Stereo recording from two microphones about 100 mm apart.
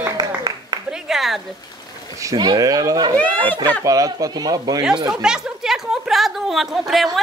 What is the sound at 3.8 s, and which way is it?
Speech, 35° right (ahead or behind).